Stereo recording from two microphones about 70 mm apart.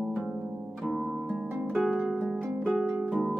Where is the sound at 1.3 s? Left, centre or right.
Centre.